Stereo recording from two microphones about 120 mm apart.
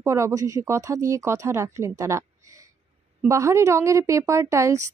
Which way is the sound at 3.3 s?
25° right (ahead or behind).